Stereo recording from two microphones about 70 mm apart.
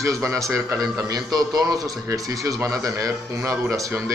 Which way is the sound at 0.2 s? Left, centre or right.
Right.